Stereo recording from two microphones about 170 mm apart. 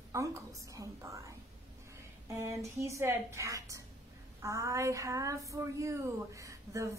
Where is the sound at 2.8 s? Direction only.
15° right (ahead or behind).